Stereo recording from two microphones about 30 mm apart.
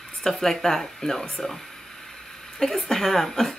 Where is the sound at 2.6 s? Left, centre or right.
Centre.